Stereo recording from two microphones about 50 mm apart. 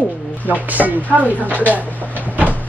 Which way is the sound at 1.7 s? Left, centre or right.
Right.